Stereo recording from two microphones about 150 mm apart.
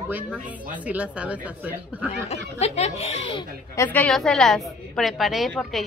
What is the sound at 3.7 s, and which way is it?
A woman's voice, 15° left (ahead or behind).